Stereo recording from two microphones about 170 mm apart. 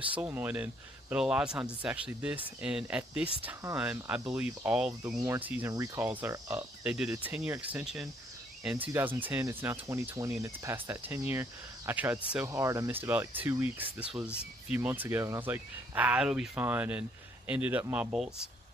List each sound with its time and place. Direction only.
0.2 s speech: 10° right (ahead or behind)
5.2 s speech: 15° right (ahead or behind)
6.8 s speech: 5° right (ahead or behind)
12.4 s speech: 20° right (ahead or behind)